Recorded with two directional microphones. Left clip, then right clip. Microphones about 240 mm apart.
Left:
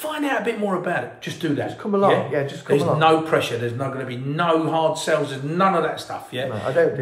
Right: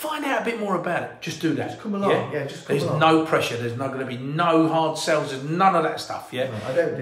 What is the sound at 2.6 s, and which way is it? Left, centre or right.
A man's voice, centre.